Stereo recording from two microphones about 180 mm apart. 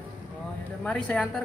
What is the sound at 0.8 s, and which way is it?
Speech, 5° left (ahead or behind).